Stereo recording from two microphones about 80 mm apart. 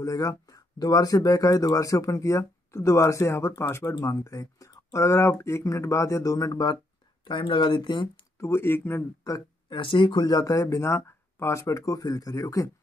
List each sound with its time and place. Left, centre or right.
0.0 s speech: left
7.2 s speech: left
8.4 s speech: left
9.7 s speech: left
10.4 s speech: left